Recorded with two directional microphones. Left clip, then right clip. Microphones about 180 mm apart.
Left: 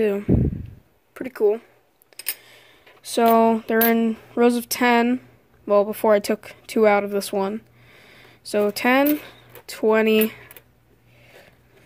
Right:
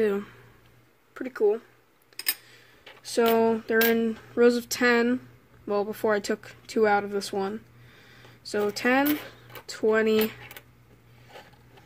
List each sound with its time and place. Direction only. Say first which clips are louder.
0.0 s speech: left 5 dB; 25° left (ahead or behind)
1.1 s speech: left 4 dB; 35° left (ahead or behind)
2.1 s a sound: right 1 dB; 40° left (ahead or behind)
2.5 s speech: left 1 dB; 40° left (ahead or behind)